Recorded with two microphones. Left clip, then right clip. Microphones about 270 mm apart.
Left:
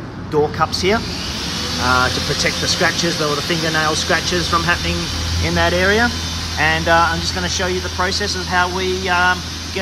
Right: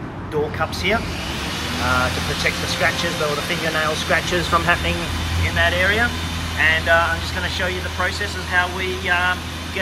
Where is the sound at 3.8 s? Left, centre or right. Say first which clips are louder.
Left 2 dB; centre.